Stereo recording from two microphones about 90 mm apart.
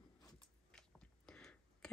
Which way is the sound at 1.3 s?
5° left (ahead or behind).